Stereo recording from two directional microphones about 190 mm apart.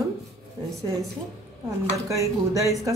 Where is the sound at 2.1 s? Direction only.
15° right (ahead or behind).